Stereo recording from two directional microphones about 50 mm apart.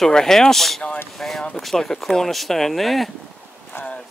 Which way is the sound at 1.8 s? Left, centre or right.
Centre.